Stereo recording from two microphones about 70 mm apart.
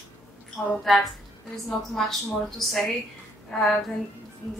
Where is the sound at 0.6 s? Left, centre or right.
Centre.